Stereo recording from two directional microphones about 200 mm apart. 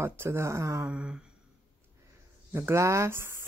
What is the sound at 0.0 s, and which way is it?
Speech, 10° right (ahead or behind).